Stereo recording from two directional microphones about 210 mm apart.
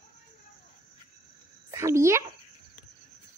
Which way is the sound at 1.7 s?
15° right (ahead or behind).